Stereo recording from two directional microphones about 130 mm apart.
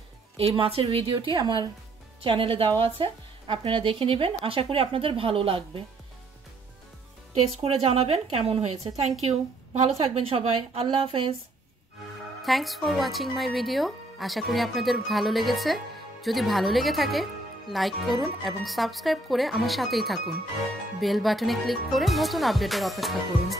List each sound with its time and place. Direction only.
0.4 s speech: 50° right (ahead or behind)
7.3 s speech: 50° right (ahead or behind)
12.4 s speech: centre (ahead or behind)